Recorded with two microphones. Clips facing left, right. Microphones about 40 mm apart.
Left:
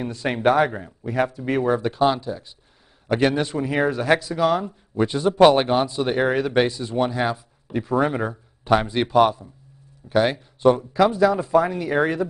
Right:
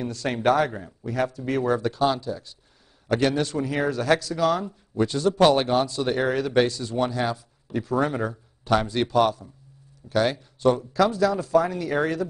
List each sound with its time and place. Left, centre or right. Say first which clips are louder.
0.0 s speech: left 3 dB; left